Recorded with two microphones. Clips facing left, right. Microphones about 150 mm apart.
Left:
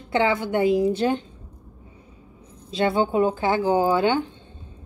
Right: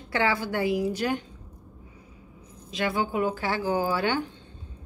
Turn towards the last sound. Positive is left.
turn(degrees=20)  # may be behind; listen again after turning